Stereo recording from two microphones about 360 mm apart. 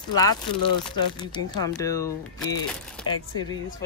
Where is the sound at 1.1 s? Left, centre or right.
Centre.